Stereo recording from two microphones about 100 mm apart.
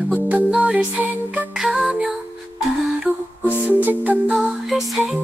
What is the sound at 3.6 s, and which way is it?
Music, 15° right (ahead or behind).